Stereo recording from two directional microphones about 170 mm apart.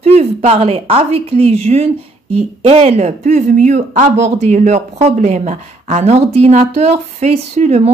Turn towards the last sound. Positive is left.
turn(degrees=-40)  # may be behind; listen again after turning